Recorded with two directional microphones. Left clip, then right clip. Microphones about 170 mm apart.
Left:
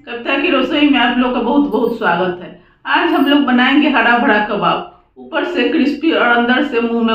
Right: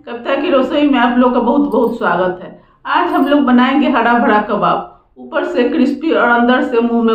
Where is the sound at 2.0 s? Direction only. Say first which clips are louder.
Right 1 dB; 30° right (ahead or behind).